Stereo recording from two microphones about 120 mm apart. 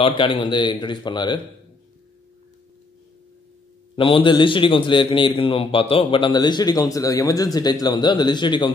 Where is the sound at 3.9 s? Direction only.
50° left (ahead or behind).